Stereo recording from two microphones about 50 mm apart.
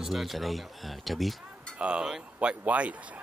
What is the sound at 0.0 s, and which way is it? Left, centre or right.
Speech, centre.